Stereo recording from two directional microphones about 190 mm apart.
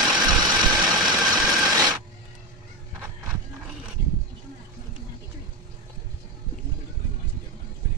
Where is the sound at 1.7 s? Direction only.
20° right (ahead or behind).